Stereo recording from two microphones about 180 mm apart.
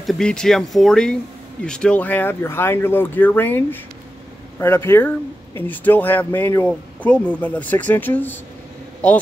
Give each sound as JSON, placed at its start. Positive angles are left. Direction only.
{"t": 0.0, "sound": "speech", "side_deg": 0}